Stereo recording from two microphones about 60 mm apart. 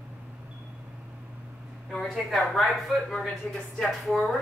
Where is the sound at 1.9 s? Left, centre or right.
Centre.